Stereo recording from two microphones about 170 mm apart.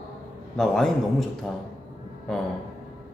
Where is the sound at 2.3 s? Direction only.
5° left (ahead or behind).